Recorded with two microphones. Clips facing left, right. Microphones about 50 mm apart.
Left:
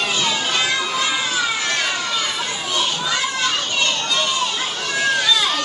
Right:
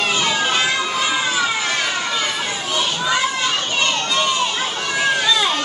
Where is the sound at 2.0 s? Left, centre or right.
Right.